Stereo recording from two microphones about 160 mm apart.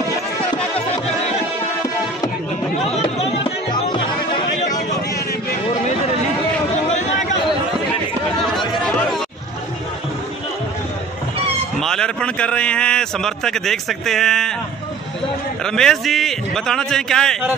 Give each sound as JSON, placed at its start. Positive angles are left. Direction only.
{"t": 0.7, "sound": "music", "side_deg": 40}
{"t": 11.8, "sound": "a man's voice", "side_deg": 5}
{"t": 15.6, "sound": "a man's voice", "side_deg": 5}